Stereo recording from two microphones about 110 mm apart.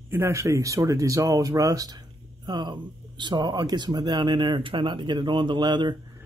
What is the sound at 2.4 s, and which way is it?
Speech, 45° right (ahead or behind).